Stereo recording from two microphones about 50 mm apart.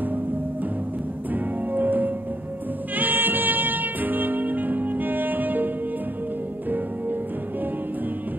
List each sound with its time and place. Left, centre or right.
1.3 s music: right